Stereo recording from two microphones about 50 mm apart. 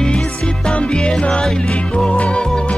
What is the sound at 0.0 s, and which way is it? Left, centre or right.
Music, centre.